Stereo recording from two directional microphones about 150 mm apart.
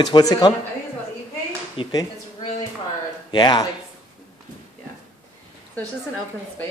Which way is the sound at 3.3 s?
30° left (ahead or behind).